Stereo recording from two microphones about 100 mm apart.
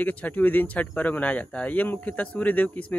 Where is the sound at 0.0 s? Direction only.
15° left (ahead or behind).